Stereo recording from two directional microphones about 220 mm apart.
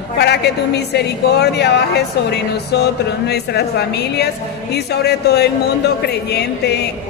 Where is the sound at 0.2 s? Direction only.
50° left (ahead or behind).